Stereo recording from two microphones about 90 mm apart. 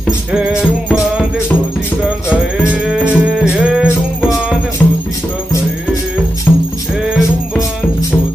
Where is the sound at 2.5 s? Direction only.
10° right (ahead or behind).